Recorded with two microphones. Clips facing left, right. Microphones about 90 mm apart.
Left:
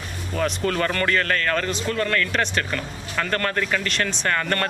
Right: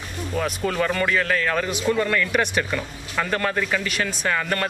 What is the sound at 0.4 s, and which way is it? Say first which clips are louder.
A man's voice: left 1 dB; 5° right (ahead or behind).